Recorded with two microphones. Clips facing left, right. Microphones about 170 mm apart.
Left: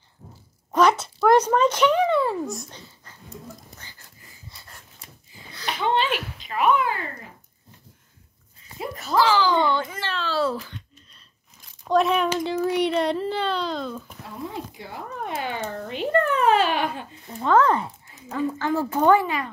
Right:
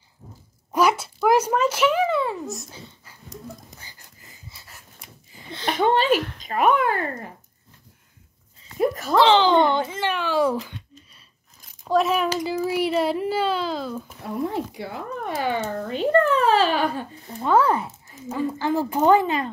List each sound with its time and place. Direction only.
0.7 s speech: 10° right (ahead or behind)
4.5 s a sound: 5° right (ahead or behind)
5.7 s a sound: 45° right (ahead or behind)
6.1 s a sound: 5° left (ahead or behind)
6.4 s speech: 45° right (ahead or behind)
9.1 s a child's voice: 25° right (ahead or behind)
11.8 s speech: centre (ahead or behind)
14.4 s speech: 65° right (ahead or behind)
15.2 s speech: 35° right (ahead or behind)
17.4 s speech: 10° right (ahead or behind); by 19.5 s 25° right (ahead or behind)